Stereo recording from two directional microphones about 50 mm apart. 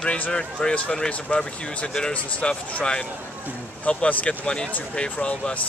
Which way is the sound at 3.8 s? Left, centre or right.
Left.